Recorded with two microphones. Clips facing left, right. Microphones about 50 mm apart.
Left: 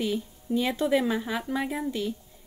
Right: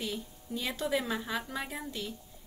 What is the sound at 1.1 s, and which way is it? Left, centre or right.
Speech, left.